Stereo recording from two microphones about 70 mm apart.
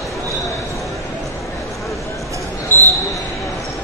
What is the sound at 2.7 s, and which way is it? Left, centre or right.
Basketball bounce, left.